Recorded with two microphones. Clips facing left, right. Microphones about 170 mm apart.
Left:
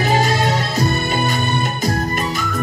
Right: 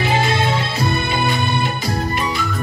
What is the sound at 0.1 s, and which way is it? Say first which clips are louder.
Music: left 2 dB; 40° left (ahead or behind).